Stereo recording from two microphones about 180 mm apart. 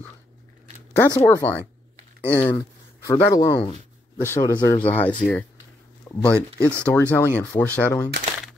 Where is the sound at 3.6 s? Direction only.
30° left (ahead or behind).